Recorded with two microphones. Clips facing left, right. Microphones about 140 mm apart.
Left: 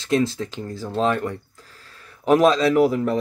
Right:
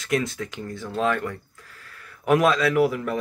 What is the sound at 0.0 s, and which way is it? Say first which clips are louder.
Speech: left 4 dB; 30° left (ahead or behind).